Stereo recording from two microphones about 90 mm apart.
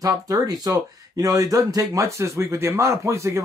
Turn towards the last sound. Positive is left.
turn(degrees=-30)  # may be behind; listen again after turning